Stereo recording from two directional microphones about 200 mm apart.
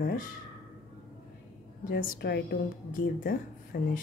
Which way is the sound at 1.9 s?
55° left (ahead or behind).